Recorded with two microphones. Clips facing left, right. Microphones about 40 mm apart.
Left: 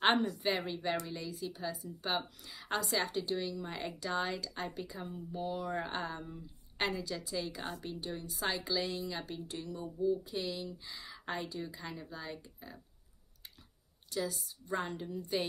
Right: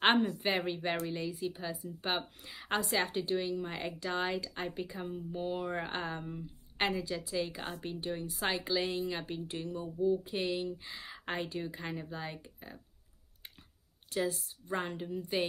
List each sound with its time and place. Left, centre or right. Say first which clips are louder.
0.0 s a woman's voice: right 2 dB; right
3.8 s a woman's voice: left 1 dB; centre
10.2 s a woman's voice: right 4 dB; right
14.1 s a woman's voice: right 3 dB; right
15.0 s a woman's voice: right 2 dB; right